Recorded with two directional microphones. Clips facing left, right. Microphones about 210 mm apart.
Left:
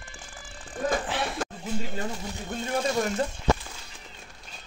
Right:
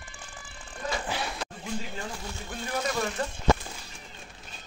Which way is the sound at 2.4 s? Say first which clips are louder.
Left 4 dB; 25° left (ahead or behind).